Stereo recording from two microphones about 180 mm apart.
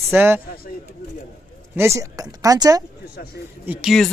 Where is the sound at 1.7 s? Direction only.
15° right (ahead or behind).